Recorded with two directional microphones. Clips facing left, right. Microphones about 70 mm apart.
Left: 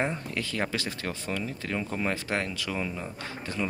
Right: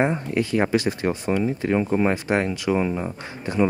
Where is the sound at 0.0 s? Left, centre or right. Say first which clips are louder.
Right 8 dB; right.